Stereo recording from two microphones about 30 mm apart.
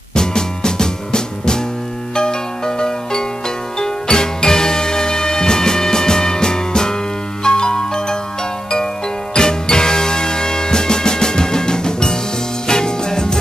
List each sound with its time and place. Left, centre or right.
0.1 s music: left
9.4 s music: left